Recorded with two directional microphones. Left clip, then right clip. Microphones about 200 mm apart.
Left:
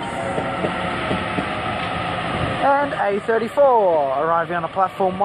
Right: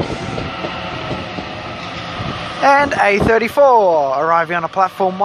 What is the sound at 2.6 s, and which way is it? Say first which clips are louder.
Speech: right 7 dB; 30° right (ahead or behind).